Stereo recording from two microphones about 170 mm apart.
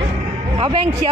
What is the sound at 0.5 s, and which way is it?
Speech, 30° right (ahead or behind).